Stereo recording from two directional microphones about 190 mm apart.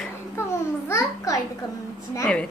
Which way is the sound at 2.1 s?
10° left (ahead or behind).